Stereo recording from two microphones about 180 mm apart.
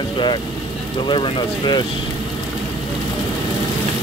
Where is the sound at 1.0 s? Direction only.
25° left (ahead or behind).